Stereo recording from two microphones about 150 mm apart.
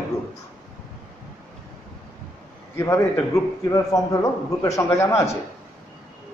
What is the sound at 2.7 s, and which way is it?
A man's voice, 15° left (ahead or behind).